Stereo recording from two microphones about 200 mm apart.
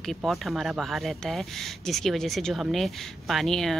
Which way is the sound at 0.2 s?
Centre (ahead or behind).